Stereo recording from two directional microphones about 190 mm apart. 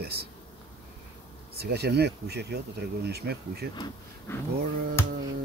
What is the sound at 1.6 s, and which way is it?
Speech, 60° right (ahead or behind).